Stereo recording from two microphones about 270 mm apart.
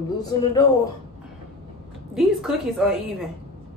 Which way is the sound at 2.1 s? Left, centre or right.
Centre.